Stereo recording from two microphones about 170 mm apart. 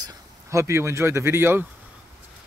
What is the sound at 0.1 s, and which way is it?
Speech, 15° right (ahead or behind).